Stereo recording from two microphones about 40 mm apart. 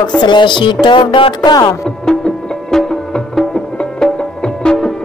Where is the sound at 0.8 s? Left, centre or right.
Left.